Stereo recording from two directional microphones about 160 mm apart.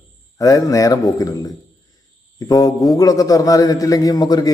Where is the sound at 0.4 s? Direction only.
20° left (ahead or behind).